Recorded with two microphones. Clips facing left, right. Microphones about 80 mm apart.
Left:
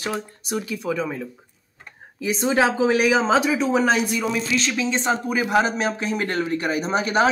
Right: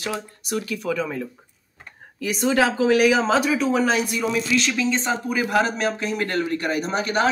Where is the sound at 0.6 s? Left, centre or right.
Centre.